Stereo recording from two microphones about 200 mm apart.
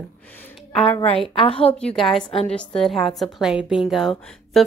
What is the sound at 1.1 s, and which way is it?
Speech, 30° left (ahead or behind).